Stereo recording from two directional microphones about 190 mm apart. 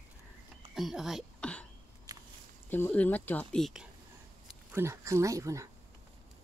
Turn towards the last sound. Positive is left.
turn(degrees=-15)  # may be behind; listen again after turning